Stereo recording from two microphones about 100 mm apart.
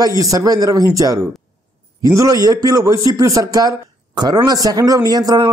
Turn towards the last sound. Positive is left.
turn(degrees=-40)  # may be behind; listen again after turning